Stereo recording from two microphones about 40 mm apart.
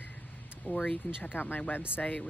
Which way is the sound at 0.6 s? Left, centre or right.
Left.